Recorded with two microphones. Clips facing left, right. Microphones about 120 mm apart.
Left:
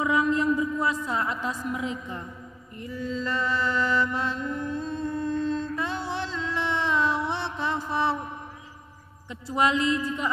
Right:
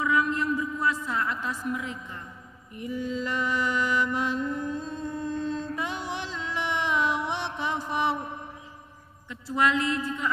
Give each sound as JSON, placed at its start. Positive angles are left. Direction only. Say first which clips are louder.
{"t": 0.0, "sound": "a woman's voice", "louder": "left 3 dB", "side_deg": 20}
{"t": 2.7, "sound": "mantra", "louder": "right 1 dB", "side_deg": -15}
{"t": 9.3, "sound": "speech", "louder": "left 1 dB", "side_deg": 20}